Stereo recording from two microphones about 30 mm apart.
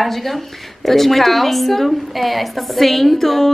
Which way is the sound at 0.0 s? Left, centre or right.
Centre.